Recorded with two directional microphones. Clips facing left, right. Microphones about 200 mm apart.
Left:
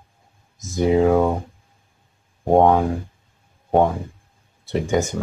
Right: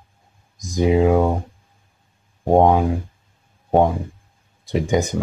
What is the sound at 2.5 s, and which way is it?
Speech, 15° right (ahead or behind).